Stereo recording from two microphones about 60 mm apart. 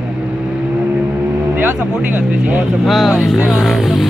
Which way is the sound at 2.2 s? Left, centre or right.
Right.